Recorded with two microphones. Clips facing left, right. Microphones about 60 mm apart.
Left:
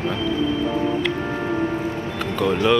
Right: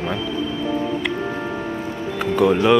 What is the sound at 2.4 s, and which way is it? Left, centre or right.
Speech, centre.